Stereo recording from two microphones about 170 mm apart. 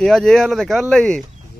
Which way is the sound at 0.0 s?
5° left (ahead or behind).